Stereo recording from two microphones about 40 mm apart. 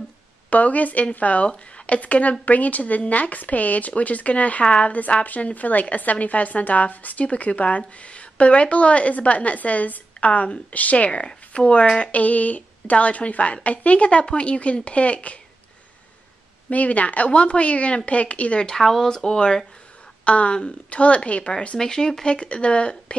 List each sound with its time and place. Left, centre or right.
0.5 s speech: left
11.1 s speech: left
16.6 s speech: left
18.8 s speech: centre
20.2 s speech: left
21.7 s speech: centre
22.3 s speech: left